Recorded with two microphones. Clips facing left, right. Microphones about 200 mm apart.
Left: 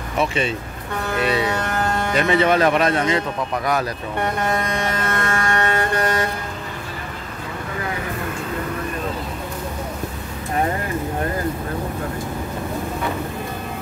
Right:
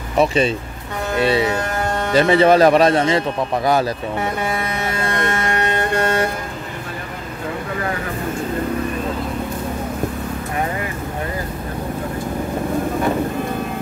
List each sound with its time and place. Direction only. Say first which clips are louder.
0.2 s a man's voice: right 5 dB; 35° right (ahead or behind)
4.2 s music: left 4 dB; 5° right (ahead or behind)
5.1 s vehicle: right 3 dB; 20° right (ahead or behind)